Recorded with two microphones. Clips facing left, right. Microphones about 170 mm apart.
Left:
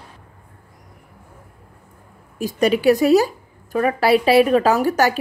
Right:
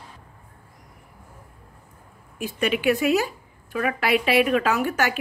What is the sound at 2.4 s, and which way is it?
A woman's voice, 40° left (ahead or behind).